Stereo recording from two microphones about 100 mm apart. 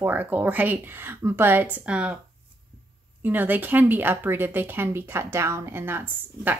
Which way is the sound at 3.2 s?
20° right (ahead or behind).